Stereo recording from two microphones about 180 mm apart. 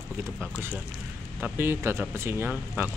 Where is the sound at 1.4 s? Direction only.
10° right (ahead or behind).